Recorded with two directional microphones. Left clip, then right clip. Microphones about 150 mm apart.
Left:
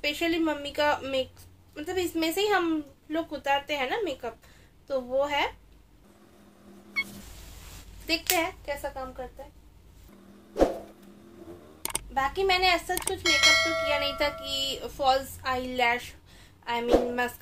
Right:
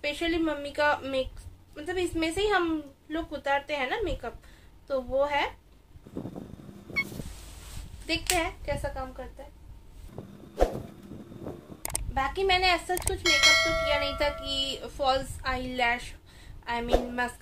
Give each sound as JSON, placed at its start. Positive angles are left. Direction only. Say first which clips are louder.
{"t": 0.0, "sound": "a woman's voice", "louder": "left 1 dB", "side_deg": 20}
{"t": 6.9, "sound": "a sound", "louder": "right 1 dB", "side_deg": 0}
{"t": 8.4, "sound": "a woman's voice", "louder": "left 1 dB", "side_deg": 15}
{"t": 10.6, "sound": "a sound", "louder": "left 3 dB", "side_deg": 0}
{"t": 12.1, "sound": "a woman's voice", "louder": "left 1 dB", "side_deg": 15}
{"t": 13.2, "sound": "speech", "louder": "even", "side_deg": 0}
{"t": 13.9, "sound": "a woman's voice", "louder": "even", "side_deg": 20}